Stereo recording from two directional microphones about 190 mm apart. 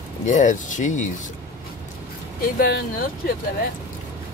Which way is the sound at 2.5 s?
50° left (ahead or behind).